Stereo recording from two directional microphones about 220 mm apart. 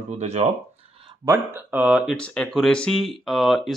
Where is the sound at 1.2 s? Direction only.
5° right (ahead or behind).